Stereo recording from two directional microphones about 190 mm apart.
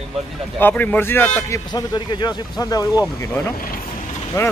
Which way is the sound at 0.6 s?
10° left (ahead or behind).